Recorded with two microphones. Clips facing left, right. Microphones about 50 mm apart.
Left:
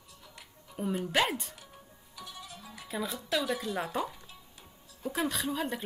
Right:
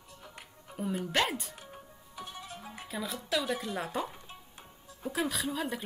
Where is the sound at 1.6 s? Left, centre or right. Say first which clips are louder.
Right 4 dB; right.